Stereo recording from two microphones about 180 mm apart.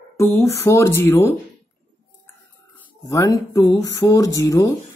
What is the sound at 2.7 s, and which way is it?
Speech, 20° left (ahead or behind).